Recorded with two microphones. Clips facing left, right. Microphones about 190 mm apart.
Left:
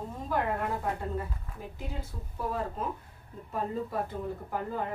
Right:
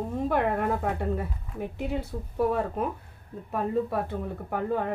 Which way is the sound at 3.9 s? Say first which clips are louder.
Right 4 dB; 65° right (ahead or behind).